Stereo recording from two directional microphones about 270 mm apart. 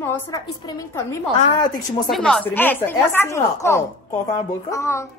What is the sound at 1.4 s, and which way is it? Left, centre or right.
Speech, left.